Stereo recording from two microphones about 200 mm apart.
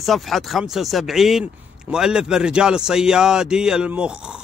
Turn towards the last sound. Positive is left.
turn(degrees=-5)  # may be behind; listen again after turning